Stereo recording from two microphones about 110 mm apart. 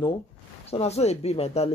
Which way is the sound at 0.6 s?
75° left (ahead or behind).